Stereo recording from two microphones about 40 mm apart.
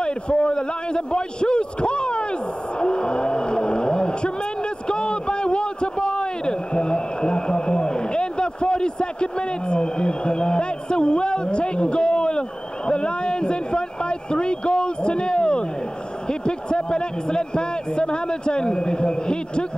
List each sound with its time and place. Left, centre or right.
0.0 s a man's voice: left
2.8 s vehicle: left
4.8 s a man's voice: left